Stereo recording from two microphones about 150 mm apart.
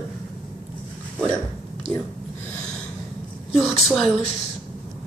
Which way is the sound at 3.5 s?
Centre (ahead or behind).